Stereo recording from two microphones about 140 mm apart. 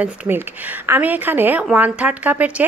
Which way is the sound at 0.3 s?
20° right (ahead or behind).